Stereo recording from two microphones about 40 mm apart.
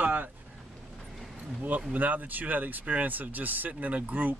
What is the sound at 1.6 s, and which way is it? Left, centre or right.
Speech, right.